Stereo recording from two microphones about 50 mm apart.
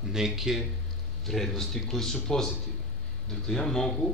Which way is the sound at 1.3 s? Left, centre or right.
Centre.